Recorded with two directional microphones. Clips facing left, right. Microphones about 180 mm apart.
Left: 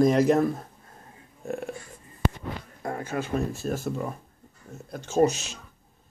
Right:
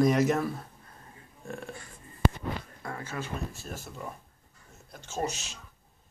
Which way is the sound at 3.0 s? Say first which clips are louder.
Left 9 dB; 55° left (ahead or behind).